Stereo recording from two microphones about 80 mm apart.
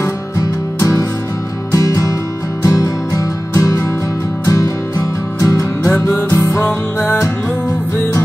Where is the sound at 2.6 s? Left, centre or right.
Left.